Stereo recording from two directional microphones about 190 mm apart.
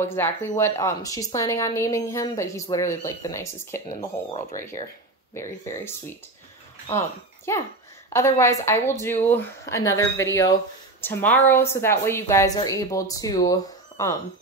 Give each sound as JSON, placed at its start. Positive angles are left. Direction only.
{"t": 0.0, "sound": "speech", "side_deg": 10}
{"t": 4.3, "sound": "speech", "side_deg": 35}
{"t": 5.3, "sound": "speech", "side_deg": 15}